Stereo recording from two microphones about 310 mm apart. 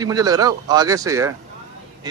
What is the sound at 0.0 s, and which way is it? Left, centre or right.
A man's voice, centre.